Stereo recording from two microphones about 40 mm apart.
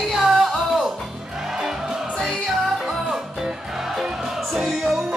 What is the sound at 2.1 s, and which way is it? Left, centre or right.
Music, centre.